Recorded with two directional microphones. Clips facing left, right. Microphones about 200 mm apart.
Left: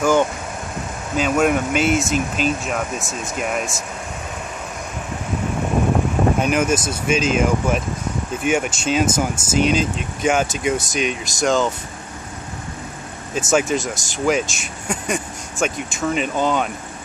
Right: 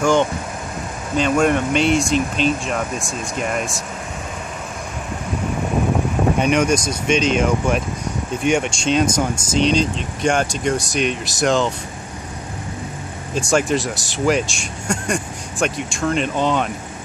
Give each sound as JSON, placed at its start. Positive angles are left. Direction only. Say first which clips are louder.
{"t": 0.0, "sound": "speech", "louder": "even", "side_deg": 5}
{"t": 6.3, "sound": "speech", "louder": "right 1 dB", "side_deg": 5}
{"t": 13.3, "sound": "speech", "louder": "even", "side_deg": 5}